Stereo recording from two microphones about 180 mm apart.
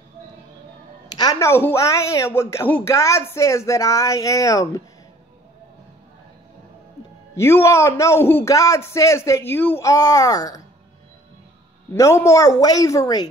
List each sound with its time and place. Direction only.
1.1 s a woman's voice: 20° left (ahead or behind)
7.3 s a woman's voice: 15° left (ahead or behind)
11.9 s a woman's voice: 15° left (ahead or behind)